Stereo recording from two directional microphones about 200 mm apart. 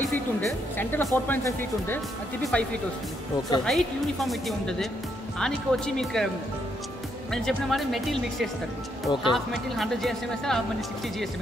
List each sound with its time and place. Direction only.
0.7 s speech: 10° left (ahead or behind)
7.4 s speech: centre (ahead or behind)
9.0 s speech: 25° left (ahead or behind)
9.3 s speech: centre (ahead or behind)